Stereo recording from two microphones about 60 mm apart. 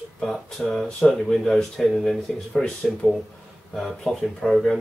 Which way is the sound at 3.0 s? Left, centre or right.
Left.